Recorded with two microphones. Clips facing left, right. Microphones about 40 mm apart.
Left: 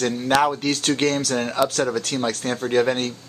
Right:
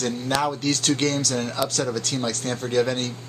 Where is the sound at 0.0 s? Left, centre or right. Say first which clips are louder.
Left 5 dB; left.